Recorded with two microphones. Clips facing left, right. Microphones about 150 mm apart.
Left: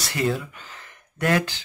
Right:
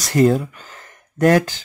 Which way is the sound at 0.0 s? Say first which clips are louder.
Right 10 dB; 40° right (ahead or behind).